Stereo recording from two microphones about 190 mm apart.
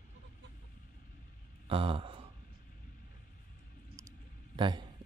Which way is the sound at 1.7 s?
30° right (ahead or behind).